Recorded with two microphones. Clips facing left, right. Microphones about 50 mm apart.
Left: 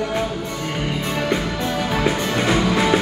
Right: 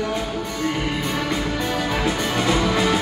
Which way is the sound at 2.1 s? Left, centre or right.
Left.